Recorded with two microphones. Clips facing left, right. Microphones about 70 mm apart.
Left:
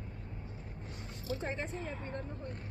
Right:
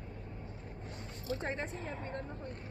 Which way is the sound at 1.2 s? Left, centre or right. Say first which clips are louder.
Even; right.